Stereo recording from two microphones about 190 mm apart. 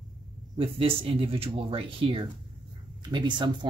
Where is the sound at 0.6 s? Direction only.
30° right (ahead or behind).